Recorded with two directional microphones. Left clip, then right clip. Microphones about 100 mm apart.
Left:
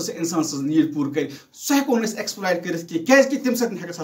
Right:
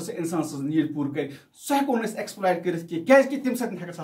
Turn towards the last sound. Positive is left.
turn(degrees=-40)  # may be behind; listen again after turning